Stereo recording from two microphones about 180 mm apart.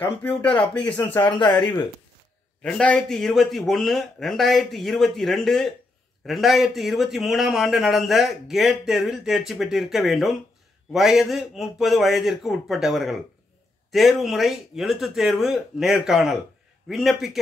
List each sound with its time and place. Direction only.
0.2 s a man's voice: 5° left (ahead or behind)
1.2 s speech: 25° left (ahead or behind)
2.6 s a man's voice: 5° left (ahead or behind)